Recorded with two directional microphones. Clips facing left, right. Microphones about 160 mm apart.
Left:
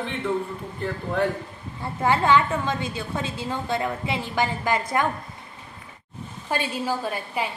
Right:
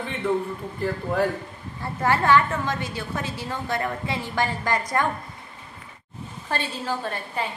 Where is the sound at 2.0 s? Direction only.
15° left (ahead or behind).